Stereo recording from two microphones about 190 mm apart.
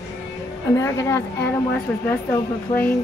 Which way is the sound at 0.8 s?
15° left (ahead or behind).